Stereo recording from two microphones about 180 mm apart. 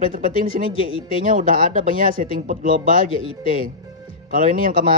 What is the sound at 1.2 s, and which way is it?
Speech, 45° right (ahead or behind).